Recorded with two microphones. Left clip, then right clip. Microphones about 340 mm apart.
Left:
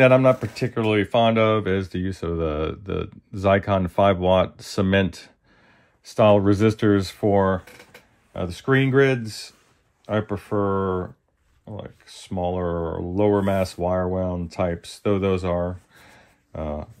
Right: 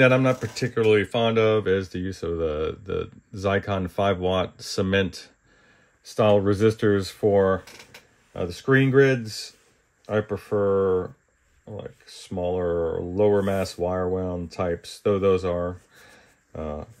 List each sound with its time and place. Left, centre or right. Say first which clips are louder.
0.3 s speech: left 5 dB; left
0.9 s speech: left 2 dB; centre
15.6 s a sound: left 1 dB; left